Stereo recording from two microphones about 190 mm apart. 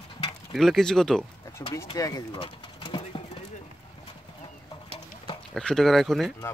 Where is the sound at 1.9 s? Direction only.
20° left (ahead or behind).